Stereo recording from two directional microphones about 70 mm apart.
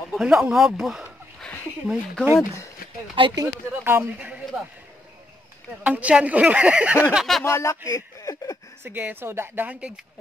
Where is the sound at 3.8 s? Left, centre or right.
Right.